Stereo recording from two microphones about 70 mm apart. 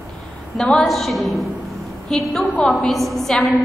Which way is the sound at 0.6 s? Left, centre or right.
Centre.